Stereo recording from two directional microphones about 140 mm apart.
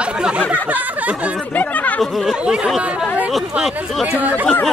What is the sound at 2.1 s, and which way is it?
Speech, 5° right (ahead or behind).